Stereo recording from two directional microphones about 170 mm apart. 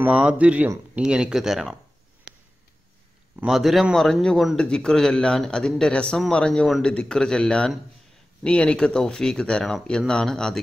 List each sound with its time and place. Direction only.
0.0 s speech: 5° right (ahead or behind)
3.3 s a man's voice: centre (ahead or behind)